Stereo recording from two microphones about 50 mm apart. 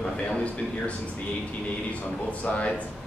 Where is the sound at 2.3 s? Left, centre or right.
Left.